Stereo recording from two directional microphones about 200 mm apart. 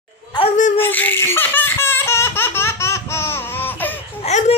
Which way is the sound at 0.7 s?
10° left (ahead or behind).